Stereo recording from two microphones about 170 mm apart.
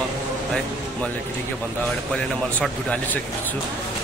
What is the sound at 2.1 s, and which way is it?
Speech, 5° left (ahead or behind).